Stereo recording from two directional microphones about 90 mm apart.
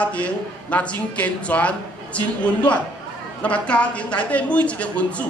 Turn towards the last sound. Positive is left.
turn(degrees=15)  # may be behind; listen again after turning